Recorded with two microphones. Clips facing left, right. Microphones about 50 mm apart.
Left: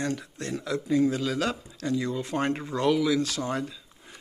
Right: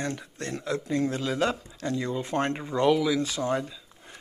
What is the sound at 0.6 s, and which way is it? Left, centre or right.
Speech, right.